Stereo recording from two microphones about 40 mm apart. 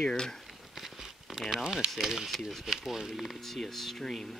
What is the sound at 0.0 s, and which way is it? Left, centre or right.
Speech, centre.